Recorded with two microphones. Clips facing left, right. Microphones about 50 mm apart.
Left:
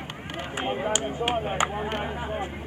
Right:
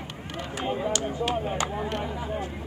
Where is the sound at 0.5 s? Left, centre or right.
Left.